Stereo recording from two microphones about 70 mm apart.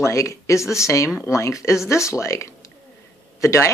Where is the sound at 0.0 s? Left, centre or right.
Left.